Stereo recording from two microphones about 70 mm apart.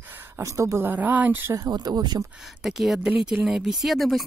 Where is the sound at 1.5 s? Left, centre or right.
Right.